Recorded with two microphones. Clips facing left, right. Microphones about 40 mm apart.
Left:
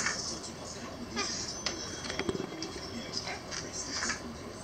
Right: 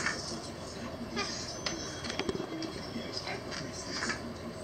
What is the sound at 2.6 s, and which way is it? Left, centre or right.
Music, centre.